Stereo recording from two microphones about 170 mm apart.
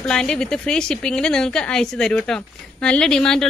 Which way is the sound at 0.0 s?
5° left (ahead or behind).